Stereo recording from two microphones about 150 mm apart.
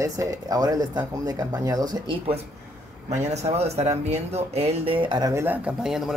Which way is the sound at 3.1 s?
50° right (ahead or behind).